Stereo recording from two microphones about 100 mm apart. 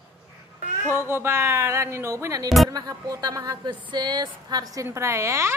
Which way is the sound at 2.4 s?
Centre (ahead or behind).